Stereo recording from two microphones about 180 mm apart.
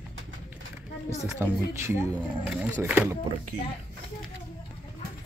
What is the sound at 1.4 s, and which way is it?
Speech, 15° right (ahead or behind).